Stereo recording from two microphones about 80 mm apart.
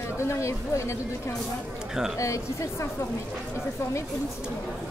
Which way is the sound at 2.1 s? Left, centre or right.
Left.